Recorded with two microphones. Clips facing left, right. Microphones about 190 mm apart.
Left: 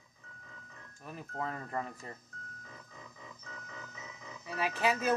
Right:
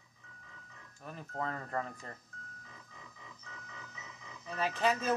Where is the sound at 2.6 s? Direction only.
45° left (ahead or behind).